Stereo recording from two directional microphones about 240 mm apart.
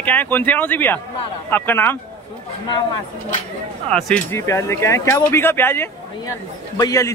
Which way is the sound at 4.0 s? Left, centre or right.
Centre.